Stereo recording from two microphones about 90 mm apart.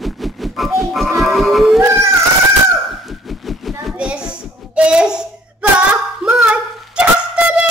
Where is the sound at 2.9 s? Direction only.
Centre (ahead or behind).